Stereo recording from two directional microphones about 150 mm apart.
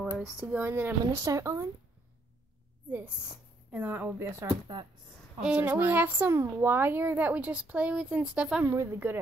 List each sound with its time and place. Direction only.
0.5 s speech: 10° right (ahead or behind)
3.7 s speech: 10° right (ahead or behind)